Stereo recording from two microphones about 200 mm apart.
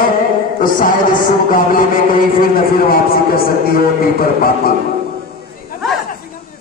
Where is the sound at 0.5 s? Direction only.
45° left (ahead or behind).